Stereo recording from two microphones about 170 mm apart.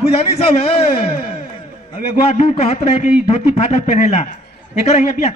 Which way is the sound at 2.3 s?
40° left (ahead or behind).